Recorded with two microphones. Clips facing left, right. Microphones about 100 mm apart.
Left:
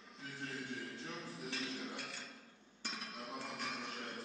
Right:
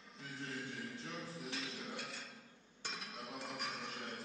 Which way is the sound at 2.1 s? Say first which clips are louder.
Even; centre (ahead or behind).